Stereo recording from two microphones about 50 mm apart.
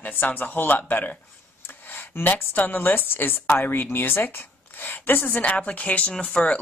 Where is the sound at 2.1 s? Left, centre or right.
Left.